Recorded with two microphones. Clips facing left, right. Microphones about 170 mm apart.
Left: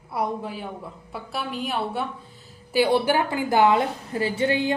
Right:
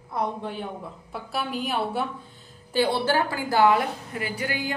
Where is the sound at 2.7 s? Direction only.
10° left (ahead or behind).